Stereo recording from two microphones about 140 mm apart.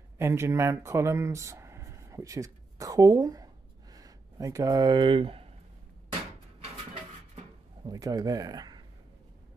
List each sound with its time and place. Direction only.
0.2 s speech: 20° right (ahead or behind); by 5.5 s 40° right (ahead or behind)
7.8 s speech: 25° right (ahead or behind)